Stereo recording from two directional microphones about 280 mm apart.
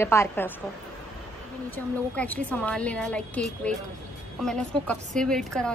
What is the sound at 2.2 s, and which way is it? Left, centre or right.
A woman's voice, centre.